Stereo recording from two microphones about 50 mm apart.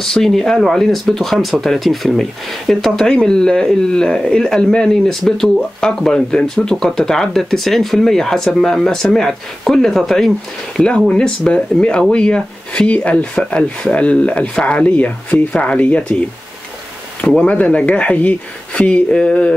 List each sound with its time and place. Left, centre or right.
0.0 s speech: centre
11.1 s speech: centre
17.4 s speech: left